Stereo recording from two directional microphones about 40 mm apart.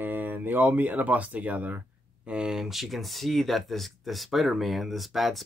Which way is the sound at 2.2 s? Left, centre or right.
Right.